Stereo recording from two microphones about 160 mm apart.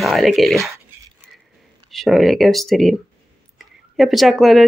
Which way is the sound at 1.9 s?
Centre (ahead or behind).